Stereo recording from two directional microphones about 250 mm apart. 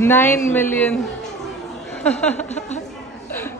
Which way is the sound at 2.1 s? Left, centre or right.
Centre.